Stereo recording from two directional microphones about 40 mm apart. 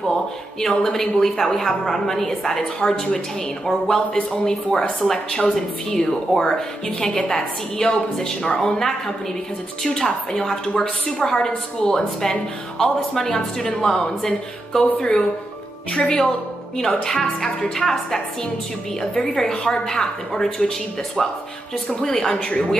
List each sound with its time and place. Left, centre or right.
0.1 s a woman's voice: centre
21.8 s a woman's voice: centre